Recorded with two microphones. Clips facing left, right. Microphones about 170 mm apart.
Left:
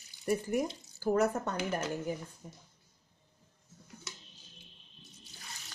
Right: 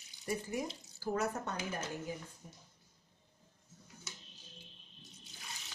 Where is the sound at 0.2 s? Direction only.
50° left (ahead or behind); by 1.9 s 75° left (ahead or behind).